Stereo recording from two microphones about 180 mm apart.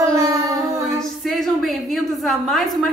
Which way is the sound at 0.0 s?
20° right (ahead or behind).